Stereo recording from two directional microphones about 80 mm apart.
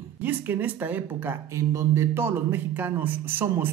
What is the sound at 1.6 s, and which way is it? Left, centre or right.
Speech, right.